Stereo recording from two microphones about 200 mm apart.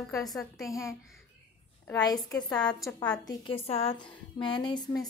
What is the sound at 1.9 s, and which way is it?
A woman's voice, 20° left (ahead or behind).